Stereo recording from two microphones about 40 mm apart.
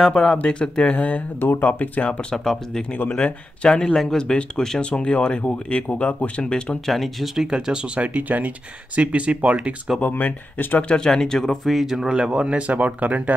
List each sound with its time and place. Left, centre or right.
0.4 s speech: left
1.4 s speech: left
1.7 s speech: left
2.3 s speech: centre; by 6.4 s left
6.4 s speech: left
6.9 s speech: centre
7.3 s speech: centre; by 9.8 s right
10.0 s speech: left
10.8 s speech: left
11.1 s speech: centre
11.6 s speech: centre
12.1 s speech: right
12.6 s speech: right